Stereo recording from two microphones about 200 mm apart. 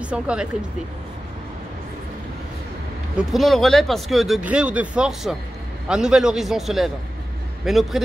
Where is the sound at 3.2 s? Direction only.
Centre (ahead or behind).